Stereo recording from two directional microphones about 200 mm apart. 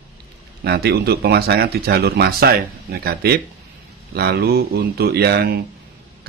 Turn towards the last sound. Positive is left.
turn(degrees=-50)  # may be behind; listen again after turning